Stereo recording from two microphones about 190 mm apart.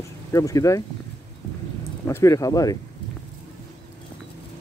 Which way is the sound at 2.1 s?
15° left (ahead or behind).